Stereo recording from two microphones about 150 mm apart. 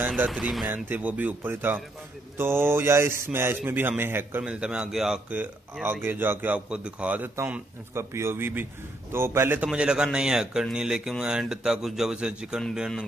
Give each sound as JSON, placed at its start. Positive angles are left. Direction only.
{"t": 0.3, "sound": "speech", "side_deg": 0}